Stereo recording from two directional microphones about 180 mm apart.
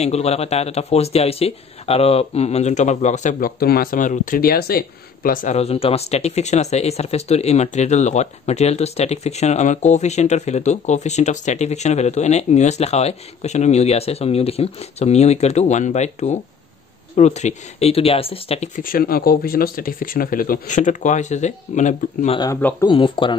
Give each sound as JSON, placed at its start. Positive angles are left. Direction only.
{"t": 0.0, "sound": "speech", "side_deg": 35}
{"t": 18.8, "sound": "speech", "side_deg": 55}
{"t": 22.6, "sound": "speech", "side_deg": 10}
{"t": 22.8, "sound": "speech", "side_deg": 25}